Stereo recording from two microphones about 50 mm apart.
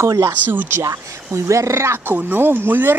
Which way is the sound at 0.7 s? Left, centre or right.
Right.